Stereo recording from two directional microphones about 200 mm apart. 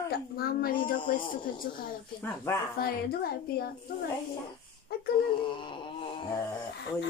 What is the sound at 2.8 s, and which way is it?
Speech, 50° left (ahead or behind).